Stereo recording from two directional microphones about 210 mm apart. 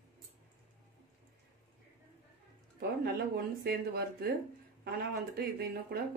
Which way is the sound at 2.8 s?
50° right (ahead or behind).